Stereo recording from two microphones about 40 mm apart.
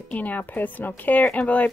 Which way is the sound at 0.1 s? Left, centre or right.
Left.